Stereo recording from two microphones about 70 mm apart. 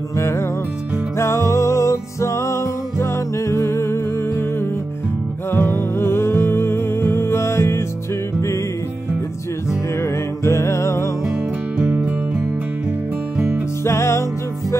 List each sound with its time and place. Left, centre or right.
1.1 s music: left
5.5 s music: left
10.4 s music: left
13.8 s music: left